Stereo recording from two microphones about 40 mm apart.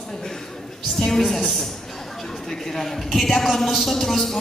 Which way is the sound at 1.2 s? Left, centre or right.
Centre.